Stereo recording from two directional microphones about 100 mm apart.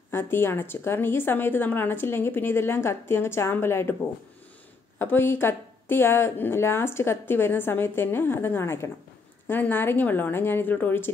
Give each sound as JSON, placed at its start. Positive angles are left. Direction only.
{"t": 0.1, "sound": "a woman's voice", "side_deg": 25}
{"t": 4.9, "sound": "a woman's voice", "side_deg": 20}